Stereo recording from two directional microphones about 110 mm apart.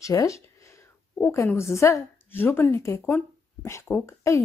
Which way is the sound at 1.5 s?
25° left (ahead or behind).